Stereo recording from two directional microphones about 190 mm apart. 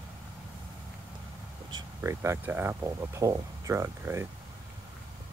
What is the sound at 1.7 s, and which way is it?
Speech, 20° right (ahead or behind).